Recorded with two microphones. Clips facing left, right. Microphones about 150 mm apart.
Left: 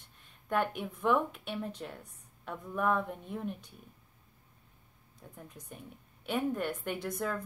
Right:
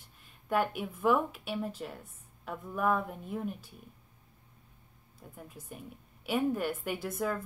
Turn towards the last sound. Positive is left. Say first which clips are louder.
# right 1 dB
turn(degrees=-5)  # may be behind; listen again after turning